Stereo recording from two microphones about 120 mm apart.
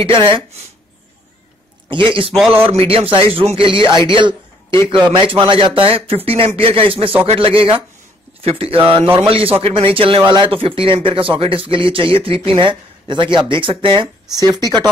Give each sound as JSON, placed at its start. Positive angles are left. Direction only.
{"t": 0.0, "sound": "speech", "side_deg": -45}
{"t": 1.9, "sound": "speech", "side_deg": -45}
{"t": 4.1, "sound": "a sound", "side_deg": -40}
{"t": 5.0, "sound": "speech", "side_deg": -45}
{"t": 14.3, "sound": "speech", "side_deg": -35}